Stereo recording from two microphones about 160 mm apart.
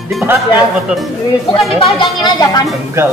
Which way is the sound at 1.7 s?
35° left (ahead or behind).